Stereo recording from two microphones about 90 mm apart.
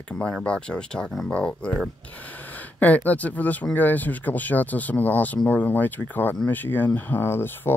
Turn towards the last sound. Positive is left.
turn(degrees=25)  # may be behind; listen again after turning